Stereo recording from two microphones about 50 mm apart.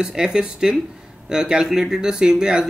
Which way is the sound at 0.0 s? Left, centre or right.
Centre.